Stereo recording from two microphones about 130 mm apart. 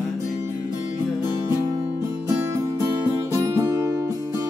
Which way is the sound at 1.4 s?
25° right (ahead or behind).